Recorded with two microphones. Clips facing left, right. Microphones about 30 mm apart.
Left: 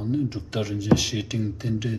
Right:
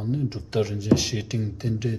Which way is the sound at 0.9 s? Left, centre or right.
Left.